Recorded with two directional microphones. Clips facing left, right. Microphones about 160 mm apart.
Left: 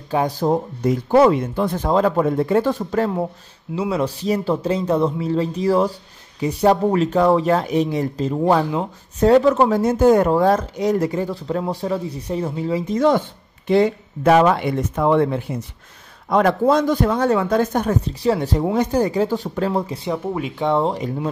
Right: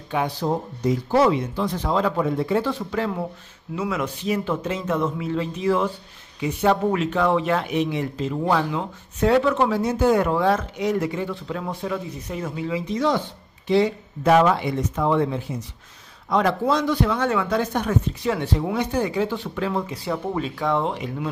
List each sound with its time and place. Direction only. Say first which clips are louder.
0.1 s speech: left 5 dB; 40° left (ahead or behind)
3.7 s speech: left 5 dB; 30° left (ahead or behind)
20.0 s speech: left 2 dB; 15° left (ahead or behind)
20.6 s speech: left 5 dB; 35° left (ahead or behind)